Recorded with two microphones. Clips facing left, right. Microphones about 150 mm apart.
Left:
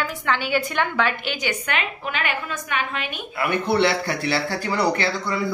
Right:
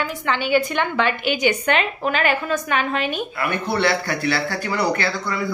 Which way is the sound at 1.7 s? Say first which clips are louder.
Right 7 dB; 35° right (ahead or behind).